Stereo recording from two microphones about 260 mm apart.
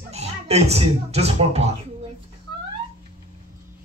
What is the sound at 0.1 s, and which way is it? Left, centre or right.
Speech, right.